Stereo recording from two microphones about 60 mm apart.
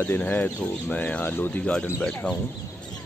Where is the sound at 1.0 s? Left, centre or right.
Left.